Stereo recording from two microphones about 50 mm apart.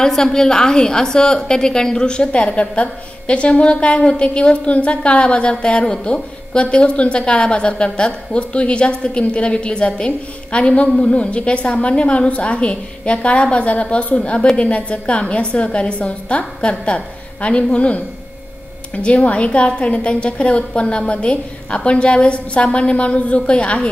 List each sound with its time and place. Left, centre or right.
0.0 s a woman's voice: centre; by 18.0 s left
19.0 s a woman's voice: left